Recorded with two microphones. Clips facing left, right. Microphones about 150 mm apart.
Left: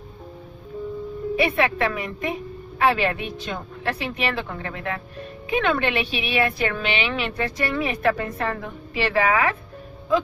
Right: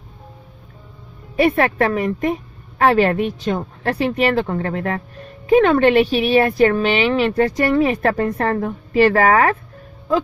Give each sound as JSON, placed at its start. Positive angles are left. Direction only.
{"t": 1.3, "sound": "a woman's voice", "side_deg": -45}